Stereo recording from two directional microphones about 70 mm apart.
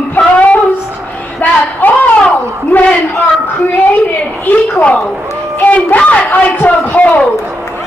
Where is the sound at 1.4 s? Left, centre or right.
Left.